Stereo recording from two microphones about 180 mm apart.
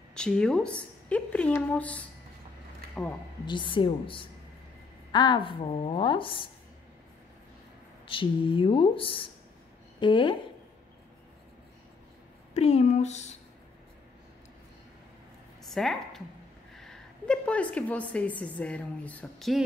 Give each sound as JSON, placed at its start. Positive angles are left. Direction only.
{"t": 0.1, "sound": "a woman's voice", "side_deg": 5}
{"t": 2.9, "sound": "a sound", "side_deg": 10}
{"t": 3.4, "sound": "a woman's voice", "side_deg": 25}
{"t": 8.1, "sound": "a woman's voice", "side_deg": 30}
{"t": 12.5, "sound": "speech", "side_deg": 35}
{"t": 15.7, "sound": "a woman's voice", "side_deg": 0}
{"t": 16.7, "sound": "a sound", "side_deg": 0}
{"t": 18.4, "sound": "a woman's voice", "side_deg": 5}